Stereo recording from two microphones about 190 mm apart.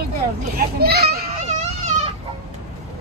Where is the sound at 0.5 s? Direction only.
55° right (ahead or behind).